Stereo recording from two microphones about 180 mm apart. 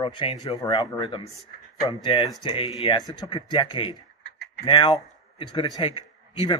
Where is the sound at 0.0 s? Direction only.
30° left (ahead or behind).